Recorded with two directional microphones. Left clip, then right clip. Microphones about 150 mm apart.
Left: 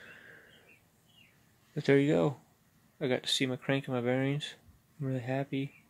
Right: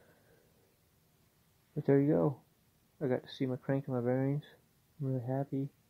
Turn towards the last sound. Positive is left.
turn(degrees=20)  # may be behind; listen again after turning